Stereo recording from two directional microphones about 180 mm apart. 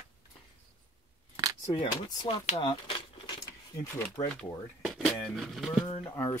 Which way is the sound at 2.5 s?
25° left (ahead or behind).